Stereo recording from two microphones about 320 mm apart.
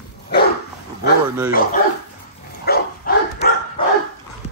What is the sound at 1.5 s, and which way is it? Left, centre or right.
Bow-wow, left.